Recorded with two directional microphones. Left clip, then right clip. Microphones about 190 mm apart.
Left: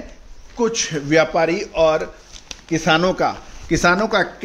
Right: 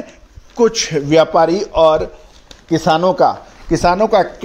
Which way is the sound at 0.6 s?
35° right (ahead or behind).